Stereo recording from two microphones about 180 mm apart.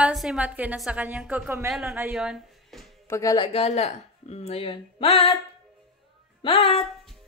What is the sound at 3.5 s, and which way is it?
Speech, 35° left (ahead or behind).